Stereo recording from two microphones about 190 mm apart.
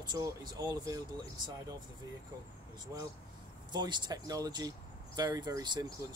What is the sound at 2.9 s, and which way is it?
Speech, 20° right (ahead or behind).